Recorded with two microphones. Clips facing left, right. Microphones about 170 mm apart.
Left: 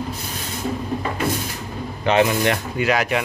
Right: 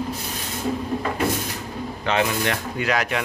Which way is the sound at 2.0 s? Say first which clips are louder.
Left 5 dB; 15° left (ahead or behind).